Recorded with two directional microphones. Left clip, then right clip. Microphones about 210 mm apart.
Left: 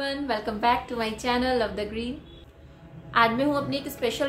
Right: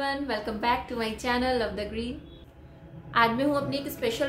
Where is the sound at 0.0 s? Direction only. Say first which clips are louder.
Left 1 dB; centre (ahead or behind).